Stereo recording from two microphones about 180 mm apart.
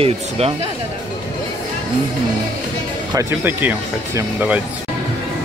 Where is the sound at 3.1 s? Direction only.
10° right (ahead or behind).